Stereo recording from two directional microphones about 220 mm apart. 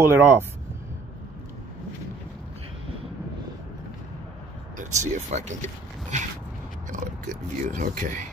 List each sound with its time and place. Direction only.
0.0 s speech: 10° right (ahead or behind)
4.7 s speech: 35° right (ahead or behind)